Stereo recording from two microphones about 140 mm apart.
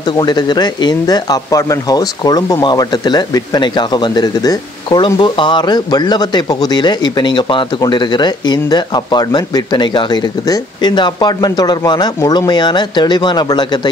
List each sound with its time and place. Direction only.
0.2 s speech: 30° left (ahead or behind)